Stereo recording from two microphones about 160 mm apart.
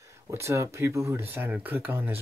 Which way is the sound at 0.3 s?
15° right (ahead or behind).